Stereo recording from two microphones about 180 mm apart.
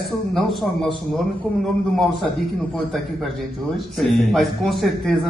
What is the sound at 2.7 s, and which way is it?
A man's voice, centre (ahead or behind).